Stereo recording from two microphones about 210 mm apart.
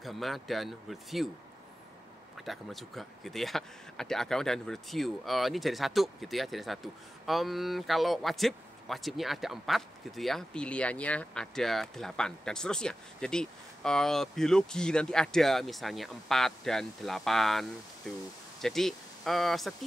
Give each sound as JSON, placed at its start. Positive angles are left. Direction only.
{"t": 0.0, "sound": "speech", "side_deg": 0}
{"t": 2.3, "sound": "speech", "side_deg": 0}